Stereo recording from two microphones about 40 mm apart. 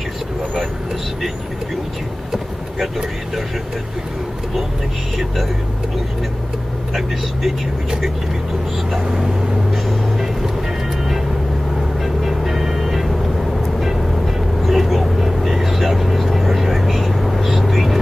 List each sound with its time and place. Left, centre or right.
6.9 s speech: centre
9.0 s speech: centre
9.7 s vehicle: centre
12.0 s vehicle: centre